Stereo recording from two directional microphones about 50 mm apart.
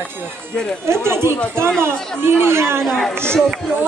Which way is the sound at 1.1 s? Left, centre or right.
Right.